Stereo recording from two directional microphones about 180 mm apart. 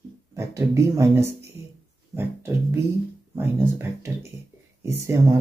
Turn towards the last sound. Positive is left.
turn(degrees=-15)  # may be behind; listen again after turning